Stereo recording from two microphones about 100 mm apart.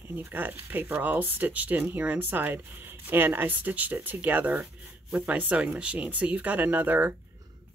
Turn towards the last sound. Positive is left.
turn(degrees=-20)  # may be behind; listen again after turning